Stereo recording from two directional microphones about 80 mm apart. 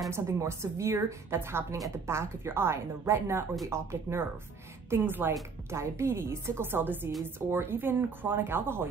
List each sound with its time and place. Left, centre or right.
0.1 s a woman's voice: right